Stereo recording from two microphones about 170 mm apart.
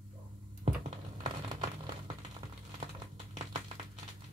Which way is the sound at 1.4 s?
35° right (ahead or behind).